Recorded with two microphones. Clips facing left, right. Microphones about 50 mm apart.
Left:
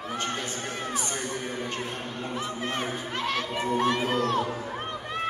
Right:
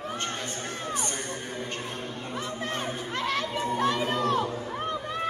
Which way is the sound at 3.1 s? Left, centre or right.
Centre.